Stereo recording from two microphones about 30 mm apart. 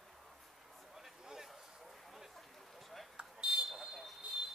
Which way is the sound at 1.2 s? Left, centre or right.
Centre.